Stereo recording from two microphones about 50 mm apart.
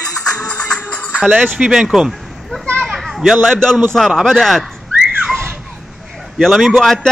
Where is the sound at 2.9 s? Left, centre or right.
Centre.